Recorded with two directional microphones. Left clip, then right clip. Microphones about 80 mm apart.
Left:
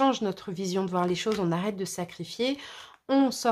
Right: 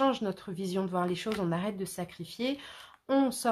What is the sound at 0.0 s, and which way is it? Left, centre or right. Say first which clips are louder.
Speech: left 3 dB; left.